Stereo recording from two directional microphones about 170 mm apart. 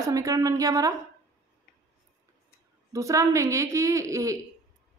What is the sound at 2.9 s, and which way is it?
A woman's voice, 20° right (ahead or behind).